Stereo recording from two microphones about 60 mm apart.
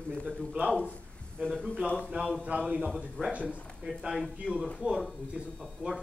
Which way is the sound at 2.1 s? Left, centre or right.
Centre.